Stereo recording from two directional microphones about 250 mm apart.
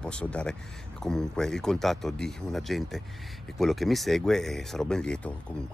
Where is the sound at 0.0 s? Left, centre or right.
Centre.